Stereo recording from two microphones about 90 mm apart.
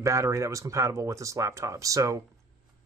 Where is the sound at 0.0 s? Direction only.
35° right (ahead or behind).